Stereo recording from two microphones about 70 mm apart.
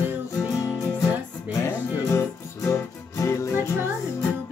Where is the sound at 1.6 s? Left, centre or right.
Left.